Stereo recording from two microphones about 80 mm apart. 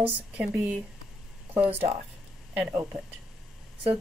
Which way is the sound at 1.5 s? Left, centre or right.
Right.